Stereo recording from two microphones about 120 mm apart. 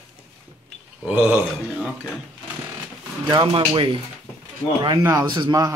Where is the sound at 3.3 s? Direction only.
40° right (ahead or behind).